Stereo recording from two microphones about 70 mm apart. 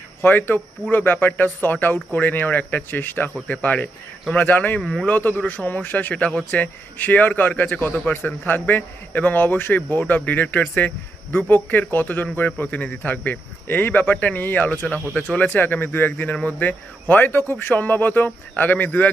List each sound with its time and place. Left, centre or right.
0.2 s a man's voice: left